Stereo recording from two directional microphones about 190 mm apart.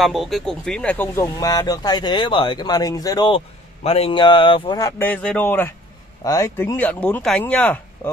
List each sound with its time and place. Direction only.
0.0 s speech: centre (ahead or behind)